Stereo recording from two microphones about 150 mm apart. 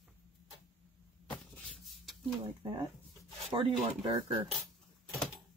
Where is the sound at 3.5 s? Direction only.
35° right (ahead or behind).